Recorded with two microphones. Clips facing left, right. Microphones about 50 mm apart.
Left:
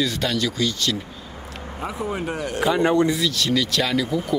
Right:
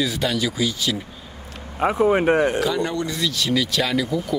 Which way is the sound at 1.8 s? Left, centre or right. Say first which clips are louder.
Right 10 dB; right.